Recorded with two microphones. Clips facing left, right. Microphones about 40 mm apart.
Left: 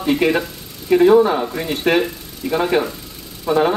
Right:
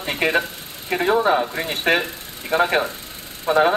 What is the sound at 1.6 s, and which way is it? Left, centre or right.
A woman's voice, right.